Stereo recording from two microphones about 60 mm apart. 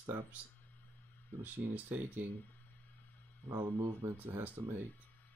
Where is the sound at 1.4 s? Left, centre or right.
Right.